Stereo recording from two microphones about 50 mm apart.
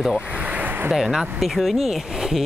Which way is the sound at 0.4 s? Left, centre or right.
Right.